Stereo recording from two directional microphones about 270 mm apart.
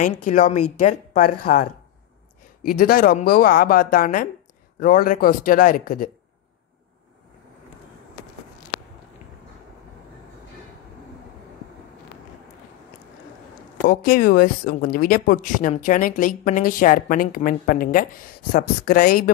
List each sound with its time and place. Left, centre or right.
0.0 s a woman's voice: left
13.8 s speech: left